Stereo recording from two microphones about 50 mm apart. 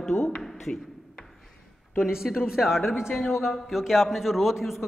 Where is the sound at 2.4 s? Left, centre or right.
Centre.